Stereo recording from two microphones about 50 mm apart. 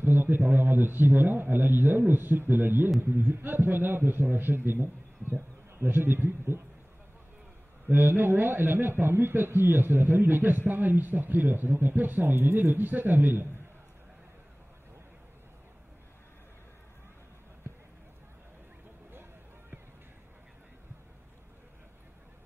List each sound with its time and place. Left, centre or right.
0.0 s a man's voice: right
7.9 s a man's voice: right